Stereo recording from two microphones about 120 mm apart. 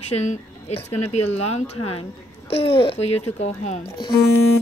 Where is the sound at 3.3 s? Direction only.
70° left (ahead or behind).